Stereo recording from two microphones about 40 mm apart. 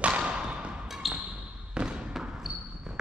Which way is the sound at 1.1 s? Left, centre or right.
Right.